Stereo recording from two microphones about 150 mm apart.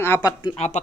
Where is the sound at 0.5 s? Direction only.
45° left (ahead or behind).